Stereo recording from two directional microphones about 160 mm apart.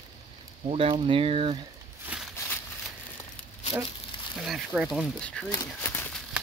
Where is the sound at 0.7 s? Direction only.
35° right (ahead or behind).